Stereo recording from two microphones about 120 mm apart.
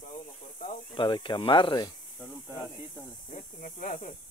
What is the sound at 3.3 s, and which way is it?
Speech, 85° left.